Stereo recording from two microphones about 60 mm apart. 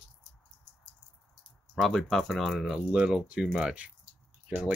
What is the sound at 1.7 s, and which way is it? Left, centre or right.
Speech, centre.